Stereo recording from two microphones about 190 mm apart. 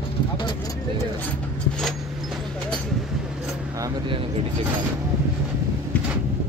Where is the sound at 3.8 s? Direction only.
25° right (ahead or behind).